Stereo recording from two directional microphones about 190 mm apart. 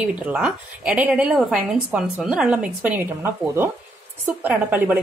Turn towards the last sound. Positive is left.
turn(degrees=-10)  # may be behind; listen again after turning